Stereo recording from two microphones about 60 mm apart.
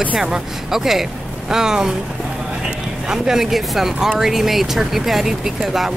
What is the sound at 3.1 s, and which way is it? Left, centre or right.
Speech, centre.